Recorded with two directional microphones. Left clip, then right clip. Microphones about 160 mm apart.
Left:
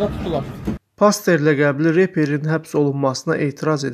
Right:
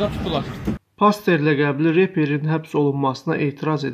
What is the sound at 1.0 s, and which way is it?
Speech, 40° left (ahead or behind).